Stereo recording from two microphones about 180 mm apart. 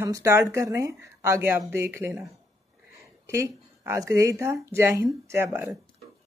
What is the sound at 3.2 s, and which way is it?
A woman's voice, 15° right (ahead or behind).